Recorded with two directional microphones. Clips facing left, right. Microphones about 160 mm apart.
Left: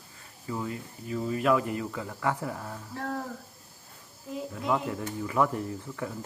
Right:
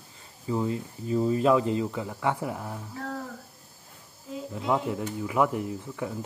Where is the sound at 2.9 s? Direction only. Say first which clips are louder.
Left 4 dB; centre (ahead or behind).